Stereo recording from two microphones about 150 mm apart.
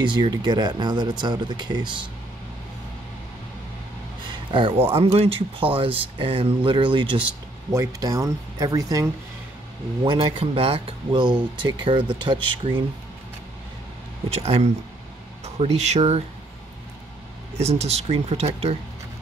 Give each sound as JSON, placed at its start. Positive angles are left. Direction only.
{"t": 0.0, "sound": "speech", "side_deg": -30}
{"t": 4.3, "sound": "a sound", "side_deg": -35}
{"t": 4.9, "sound": "speech", "side_deg": -40}
{"t": 7.7, "sound": "speech", "side_deg": -20}
{"t": 10.0, "sound": "speech", "side_deg": -35}
{"t": 14.3, "sound": "speech", "side_deg": -40}
{"t": 17.6, "sound": "speech", "side_deg": -45}